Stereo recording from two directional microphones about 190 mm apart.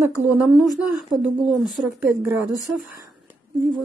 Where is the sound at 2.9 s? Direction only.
15° right (ahead or behind).